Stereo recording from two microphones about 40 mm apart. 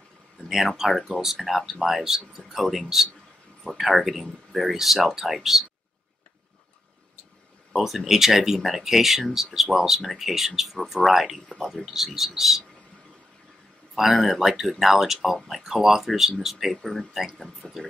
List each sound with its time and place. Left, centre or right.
1.2 s speech: centre
7.7 s speech: centre
11.8 s speech: centre
13.9 s speech: centre
17.6 s speech: centre